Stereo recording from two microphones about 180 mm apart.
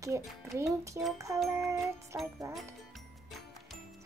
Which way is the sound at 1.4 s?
15° right (ahead or behind).